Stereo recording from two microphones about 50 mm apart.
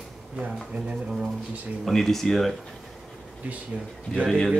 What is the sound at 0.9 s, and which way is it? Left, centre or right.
Speech, centre.